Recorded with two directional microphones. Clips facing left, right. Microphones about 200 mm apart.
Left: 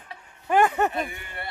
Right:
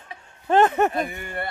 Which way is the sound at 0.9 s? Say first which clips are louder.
Right 4 dB; 50° right (ahead or behind).